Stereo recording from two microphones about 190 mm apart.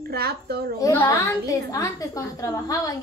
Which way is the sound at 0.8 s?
15° left (ahead or behind).